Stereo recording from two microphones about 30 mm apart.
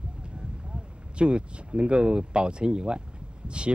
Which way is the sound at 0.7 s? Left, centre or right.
Right.